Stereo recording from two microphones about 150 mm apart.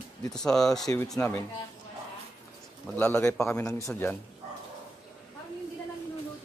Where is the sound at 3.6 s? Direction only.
20° left (ahead or behind).